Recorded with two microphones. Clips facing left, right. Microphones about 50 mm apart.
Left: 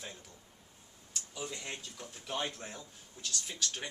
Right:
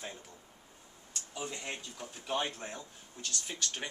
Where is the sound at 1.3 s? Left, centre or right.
Centre.